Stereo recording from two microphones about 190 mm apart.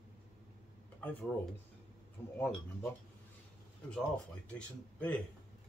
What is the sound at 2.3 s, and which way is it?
Speech, 10° left (ahead or behind).